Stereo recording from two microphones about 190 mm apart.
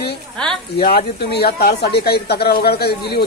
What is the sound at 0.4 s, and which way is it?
Speech, 5° left (ahead or behind).